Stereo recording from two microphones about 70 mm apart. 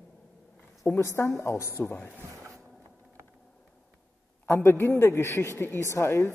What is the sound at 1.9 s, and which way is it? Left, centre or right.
Speech, centre.